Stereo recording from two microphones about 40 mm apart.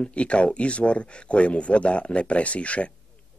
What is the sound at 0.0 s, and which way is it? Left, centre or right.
Speech, left.